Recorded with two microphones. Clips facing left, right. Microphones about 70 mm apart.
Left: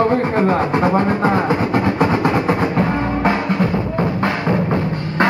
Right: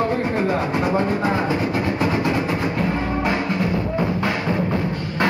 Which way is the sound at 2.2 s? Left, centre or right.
Left.